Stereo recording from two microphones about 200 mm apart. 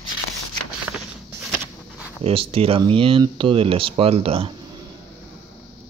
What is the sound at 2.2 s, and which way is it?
Speech, 30° right (ahead or behind).